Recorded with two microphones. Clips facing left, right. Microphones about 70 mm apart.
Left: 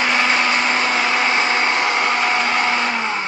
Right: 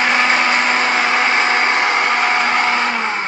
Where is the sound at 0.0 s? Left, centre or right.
Right.